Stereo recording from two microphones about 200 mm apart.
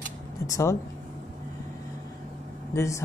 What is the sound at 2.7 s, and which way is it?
Speech, 15° left (ahead or behind).